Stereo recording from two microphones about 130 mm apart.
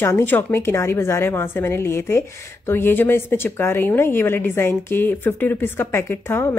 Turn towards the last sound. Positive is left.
turn(degrees=20)  # may be behind; listen again after turning